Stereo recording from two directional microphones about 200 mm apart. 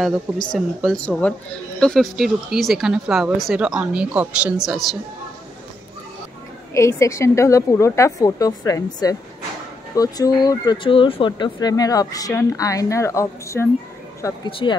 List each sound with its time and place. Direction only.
0.0 s a woman's voice: centre (ahead or behind)
6.7 s speech: 15° left (ahead or behind)